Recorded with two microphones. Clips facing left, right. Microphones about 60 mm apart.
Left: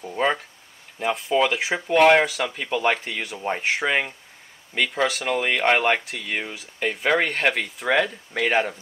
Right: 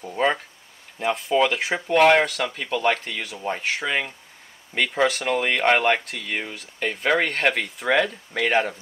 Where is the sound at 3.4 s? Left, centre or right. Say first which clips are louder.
Left 3 dB; centre.